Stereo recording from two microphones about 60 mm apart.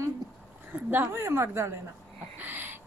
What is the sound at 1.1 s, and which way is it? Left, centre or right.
Speech, right.